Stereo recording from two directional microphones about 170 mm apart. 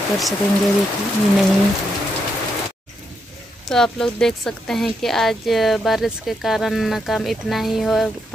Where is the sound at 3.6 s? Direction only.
5° left (ahead or behind).